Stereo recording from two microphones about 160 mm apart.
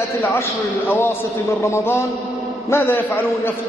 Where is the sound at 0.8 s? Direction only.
15° left (ahead or behind).